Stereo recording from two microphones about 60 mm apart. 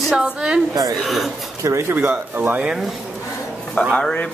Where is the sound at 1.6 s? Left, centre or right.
Right.